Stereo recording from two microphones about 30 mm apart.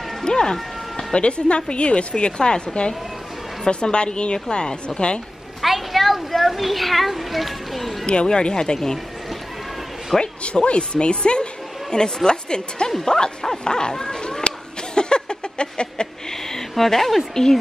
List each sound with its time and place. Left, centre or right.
0.2 s music: left
1.1 s a woman's voice: left
5.6 s a child's voice: centre
8.1 s a woman's voice: left
10.2 s a woman's voice: left
14.5 s chuckle: left
15.0 s a sound: left
16.4 s speech: centre